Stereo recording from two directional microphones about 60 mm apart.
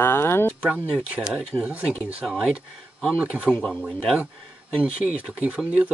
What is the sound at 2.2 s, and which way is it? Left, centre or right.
Speech, centre.